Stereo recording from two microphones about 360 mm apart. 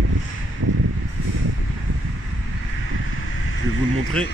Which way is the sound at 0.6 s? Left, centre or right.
Right.